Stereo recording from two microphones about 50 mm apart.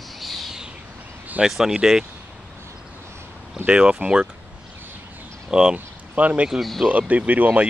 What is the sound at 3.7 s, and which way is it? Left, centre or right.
Speech, right.